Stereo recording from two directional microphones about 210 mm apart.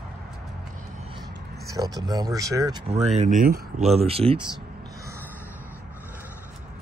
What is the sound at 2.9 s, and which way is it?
Speech, 30° right (ahead or behind).